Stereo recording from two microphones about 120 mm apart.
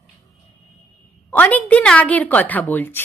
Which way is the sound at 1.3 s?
15° left (ahead or behind).